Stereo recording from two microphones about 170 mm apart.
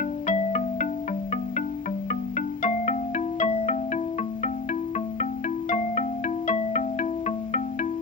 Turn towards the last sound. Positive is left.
turn(degrees=45)  # may be behind; listen again after turning